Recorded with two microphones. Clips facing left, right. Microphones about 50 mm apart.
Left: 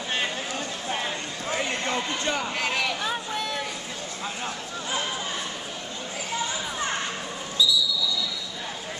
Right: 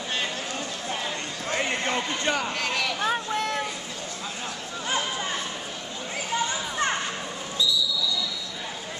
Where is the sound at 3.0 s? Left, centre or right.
Right.